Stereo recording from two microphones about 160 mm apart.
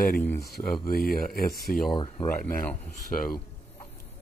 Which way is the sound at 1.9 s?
35° left (ahead or behind).